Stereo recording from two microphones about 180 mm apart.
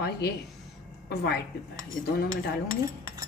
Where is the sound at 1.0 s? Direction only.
65° left (ahead or behind).